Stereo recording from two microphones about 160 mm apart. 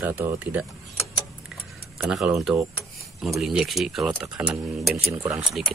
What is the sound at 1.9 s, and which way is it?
Speech, 5° right (ahead or behind).